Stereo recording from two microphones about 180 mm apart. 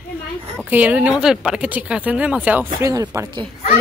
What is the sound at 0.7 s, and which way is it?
Speech, 10° right (ahead or behind).